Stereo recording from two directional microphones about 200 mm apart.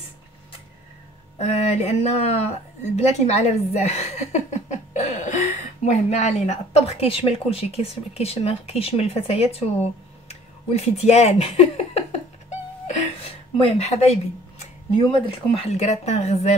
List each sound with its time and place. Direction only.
1.4 s speech: 35° left (ahead or behind)
13.6 s speech: 30° left (ahead or behind)
15.5 s speech: 30° left (ahead or behind)